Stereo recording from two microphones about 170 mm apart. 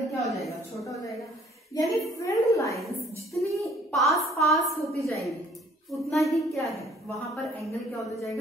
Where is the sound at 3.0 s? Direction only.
Centre (ahead or behind).